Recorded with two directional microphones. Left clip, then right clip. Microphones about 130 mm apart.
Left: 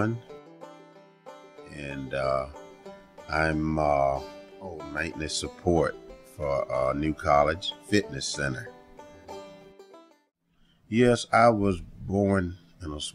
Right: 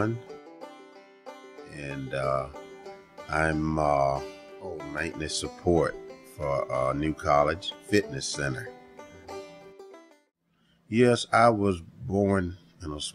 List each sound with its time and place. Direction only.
0.3 s music: centre (ahead or behind)
1.7 s speech: 35° left (ahead or behind)
2.5 s music: centre (ahead or behind)
3.3 s speech: 25° left (ahead or behind)
4.9 s speech: 40° left (ahead or behind)
8.9 s music: centre (ahead or behind)
10.9 s speech: 25° left (ahead or behind)